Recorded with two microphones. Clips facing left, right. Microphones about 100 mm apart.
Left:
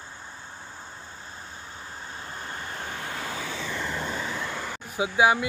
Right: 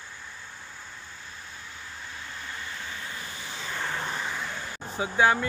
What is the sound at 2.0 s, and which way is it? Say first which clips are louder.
Vehicle: left 3 dB; 35° left (ahead or behind).